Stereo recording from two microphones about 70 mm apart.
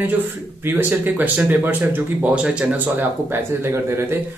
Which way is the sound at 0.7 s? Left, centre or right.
Right.